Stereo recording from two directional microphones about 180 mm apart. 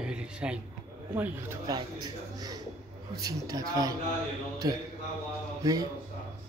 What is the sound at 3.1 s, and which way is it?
Speech, 20° right (ahead or behind).